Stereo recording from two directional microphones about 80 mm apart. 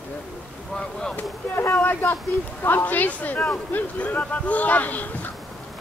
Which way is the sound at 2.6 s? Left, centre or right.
Left.